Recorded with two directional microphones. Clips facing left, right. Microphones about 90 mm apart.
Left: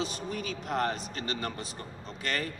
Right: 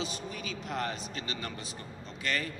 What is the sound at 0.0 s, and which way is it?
A man's voice, 45° left (ahead or behind).